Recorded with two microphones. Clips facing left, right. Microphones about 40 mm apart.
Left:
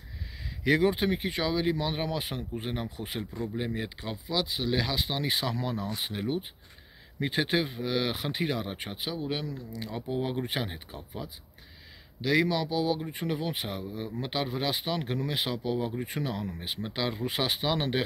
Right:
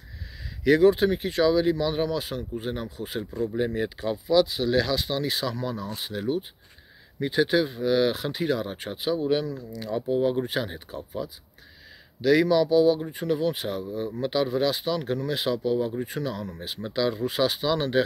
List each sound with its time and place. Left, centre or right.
0.7 s speech: centre
3.5 s speech: centre; by 6.4 s left
7.2 s speech: left
7.7 s speech: centre
13.1 s speech: left
15.2 s speech: centre